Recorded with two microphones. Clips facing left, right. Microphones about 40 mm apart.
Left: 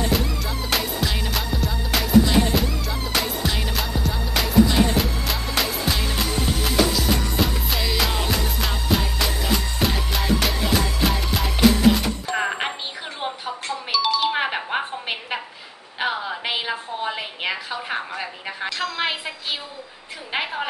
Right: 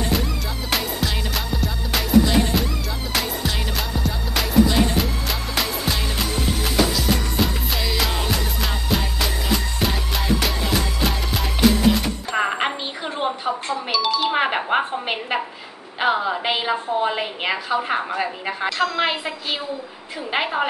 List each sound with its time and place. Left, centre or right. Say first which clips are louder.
0.7 s music: right 1 dB; centre
12.4 s music: right 5 dB; centre
13.9 s doorbell: left 1 dB; centre
14.3 s a sound: right 4 dB; centre
18.8 s a woman's voice: right 4 dB; centre